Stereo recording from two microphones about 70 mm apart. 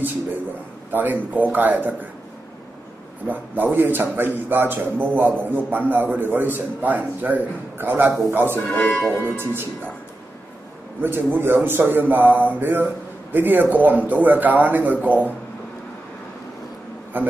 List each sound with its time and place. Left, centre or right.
0.9 s a man's voice: right
3.3 s a man's voice: right
8.5 s speech: left
9.4 s speech: right
11.0 s a man's voice: right
17.1 s a man's voice: right